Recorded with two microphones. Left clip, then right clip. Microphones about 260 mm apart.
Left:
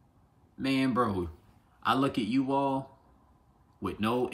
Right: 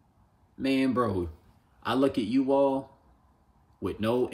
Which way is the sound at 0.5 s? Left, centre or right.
Centre.